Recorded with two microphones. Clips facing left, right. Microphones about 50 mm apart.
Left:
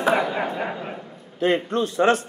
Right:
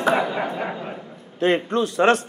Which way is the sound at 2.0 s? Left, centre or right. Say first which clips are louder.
Right 1 dB; right.